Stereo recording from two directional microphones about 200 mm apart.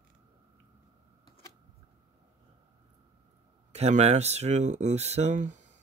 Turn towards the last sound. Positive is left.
turn(degrees=-35)  # may be behind; listen again after turning